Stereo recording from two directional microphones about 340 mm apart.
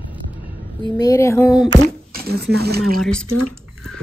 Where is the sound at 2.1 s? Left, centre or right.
Right.